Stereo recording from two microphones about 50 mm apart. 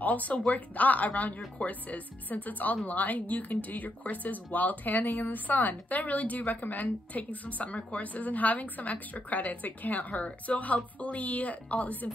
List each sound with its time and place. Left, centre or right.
0.0 s speech: left